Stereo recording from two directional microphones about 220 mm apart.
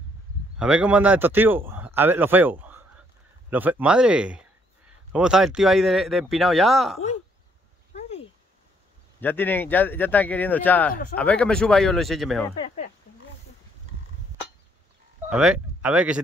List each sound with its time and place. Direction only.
0.6 s a man's voice: 5° right (ahead or behind)
7.9 s a sound: 30° left (ahead or behind)
9.2 s speech: 10° left (ahead or behind)
12.5 s speech: 25° left (ahead or behind)
15.2 s speech: 5° right (ahead or behind)